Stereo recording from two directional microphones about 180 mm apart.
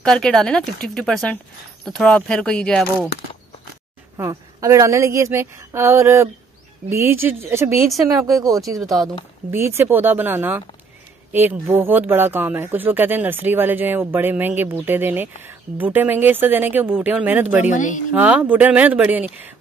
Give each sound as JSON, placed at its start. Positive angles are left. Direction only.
{"t": 0.0, "sound": "speech", "side_deg": 5}
{"t": 4.2, "sound": "speech", "side_deg": -15}
{"t": 17.6, "sound": "speech", "side_deg": 45}
{"t": 18.1, "sound": "speech", "side_deg": -10}